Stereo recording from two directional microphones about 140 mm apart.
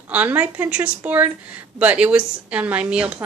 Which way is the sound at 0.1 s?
10° right (ahead or behind).